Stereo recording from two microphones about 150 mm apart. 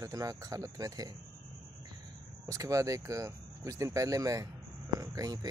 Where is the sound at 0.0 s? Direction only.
25° right (ahead or behind).